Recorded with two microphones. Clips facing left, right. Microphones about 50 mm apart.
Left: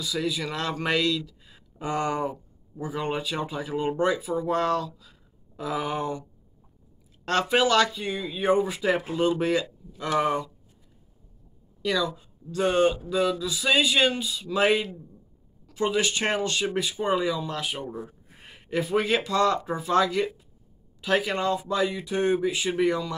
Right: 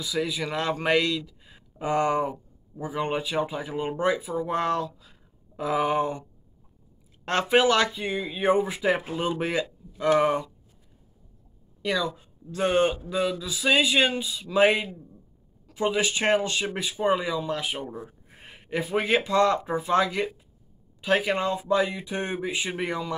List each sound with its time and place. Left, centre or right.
0.0 s a man's voice: centre
7.2 s speech: right
11.8 s speech: right